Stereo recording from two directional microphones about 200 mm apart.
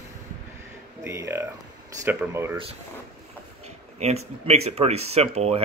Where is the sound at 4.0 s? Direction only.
30° right (ahead or behind).